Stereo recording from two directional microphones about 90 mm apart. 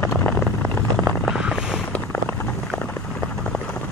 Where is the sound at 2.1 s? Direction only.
25° left (ahead or behind).